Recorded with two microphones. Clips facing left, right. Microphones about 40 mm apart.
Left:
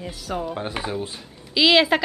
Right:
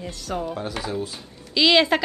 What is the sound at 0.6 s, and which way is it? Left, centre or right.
Speech, left.